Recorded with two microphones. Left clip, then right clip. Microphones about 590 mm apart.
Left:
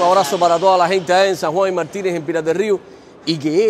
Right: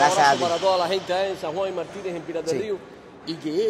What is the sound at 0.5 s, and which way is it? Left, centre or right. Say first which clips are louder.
Speech: left 8 dB; left.